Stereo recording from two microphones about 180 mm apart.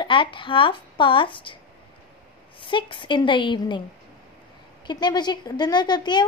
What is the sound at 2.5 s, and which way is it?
A woman's voice, 25° left (ahead or behind).